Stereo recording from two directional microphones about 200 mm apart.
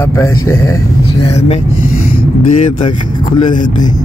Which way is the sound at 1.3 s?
35° left (ahead or behind).